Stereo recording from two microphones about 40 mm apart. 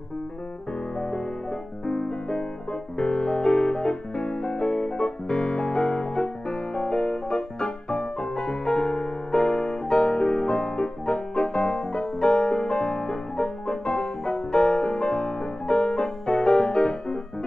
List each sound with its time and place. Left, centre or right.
0.9 s piano: centre
12.4 s music: left